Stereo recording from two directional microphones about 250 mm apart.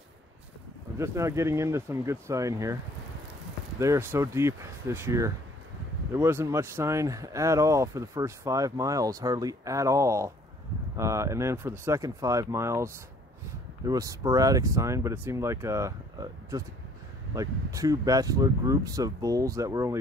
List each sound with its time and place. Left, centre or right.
0.9 s speech: centre
3.8 s speech: centre